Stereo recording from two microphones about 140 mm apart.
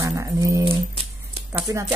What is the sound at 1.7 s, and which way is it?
Speech, 25° right (ahead or behind).